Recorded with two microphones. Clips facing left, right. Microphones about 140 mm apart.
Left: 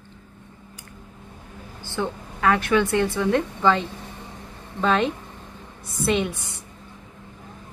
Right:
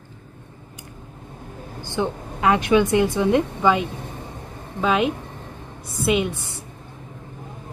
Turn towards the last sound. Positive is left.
turn(degrees=-10)  # may be behind; listen again after turning